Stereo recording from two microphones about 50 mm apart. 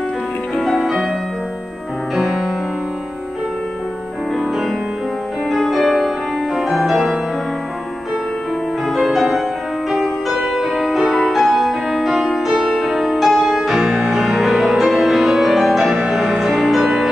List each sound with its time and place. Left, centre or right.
0.6 s music: centre
2.1 s music: centre
5.5 s music: centre
8.8 s music: centre
15.9 s music: centre
16.2 s music: centre